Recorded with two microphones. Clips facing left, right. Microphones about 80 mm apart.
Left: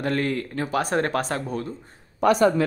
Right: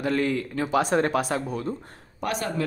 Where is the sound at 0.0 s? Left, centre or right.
Left.